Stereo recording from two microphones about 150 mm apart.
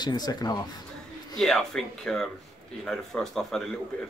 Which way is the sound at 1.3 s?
Centre (ahead or behind).